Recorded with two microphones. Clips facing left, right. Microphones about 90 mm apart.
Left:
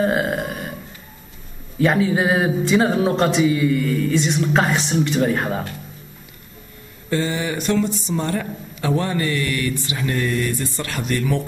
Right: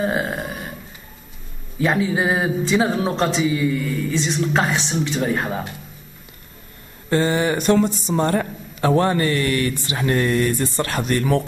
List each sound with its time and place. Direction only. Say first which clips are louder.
0.0 s burping: left 3 dB; centre (ahead or behind)
1.8 s speech: left 2 dB; centre (ahead or behind)
7.1 s speech: right 4 dB; 45° right (ahead or behind)